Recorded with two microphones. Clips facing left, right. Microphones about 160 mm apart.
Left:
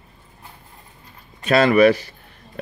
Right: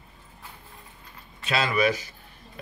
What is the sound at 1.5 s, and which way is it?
Speech, 60° left (ahead or behind).